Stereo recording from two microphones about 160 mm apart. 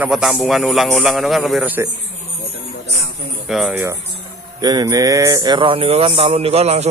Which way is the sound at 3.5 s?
Centre (ahead or behind).